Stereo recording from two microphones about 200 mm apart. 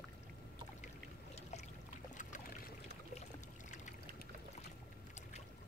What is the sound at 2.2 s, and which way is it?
Boat, 40° left (ahead or behind).